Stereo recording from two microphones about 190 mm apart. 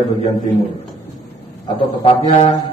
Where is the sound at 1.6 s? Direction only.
30° left (ahead or behind).